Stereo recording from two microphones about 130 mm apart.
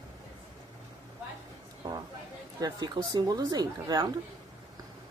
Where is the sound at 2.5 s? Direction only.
30° right (ahead or behind).